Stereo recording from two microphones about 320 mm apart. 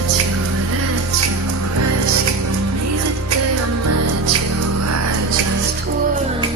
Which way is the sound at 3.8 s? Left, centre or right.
Right.